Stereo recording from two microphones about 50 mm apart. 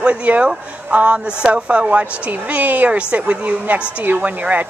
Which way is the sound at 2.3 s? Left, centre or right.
Right.